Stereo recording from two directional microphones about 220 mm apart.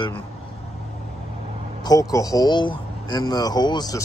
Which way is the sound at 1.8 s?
15° left (ahead or behind).